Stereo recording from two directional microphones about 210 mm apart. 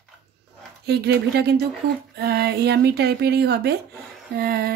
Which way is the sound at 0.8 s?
50° right (ahead or behind).